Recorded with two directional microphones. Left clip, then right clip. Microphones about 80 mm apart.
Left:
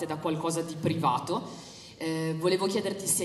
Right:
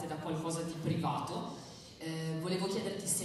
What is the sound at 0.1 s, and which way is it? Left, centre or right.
A man's voice, left.